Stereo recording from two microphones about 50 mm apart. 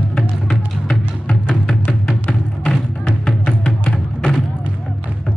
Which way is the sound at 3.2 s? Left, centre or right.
Centre.